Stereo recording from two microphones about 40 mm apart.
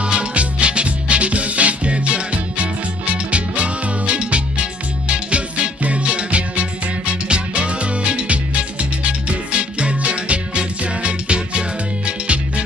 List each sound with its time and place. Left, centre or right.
0.0 s music: right